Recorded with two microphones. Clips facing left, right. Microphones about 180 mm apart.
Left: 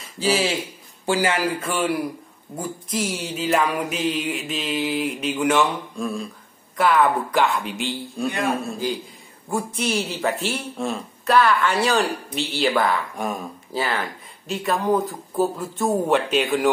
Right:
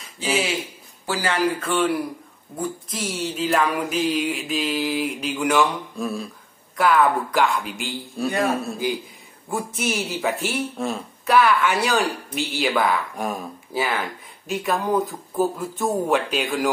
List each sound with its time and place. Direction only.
0.2 s a man's voice: 35° left (ahead or behind)
1.0 s speech: 15° left (ahead or behind)
1.6 s a sound: 10° left (ahead or behind)
3.3 s a woman's voice: 5° left (ahead or behind)